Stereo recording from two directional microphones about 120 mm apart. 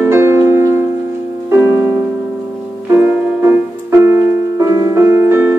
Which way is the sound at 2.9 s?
15° right (ahead or behind).